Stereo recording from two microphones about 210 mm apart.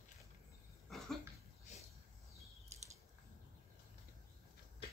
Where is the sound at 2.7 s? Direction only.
30° right (ahead or behind).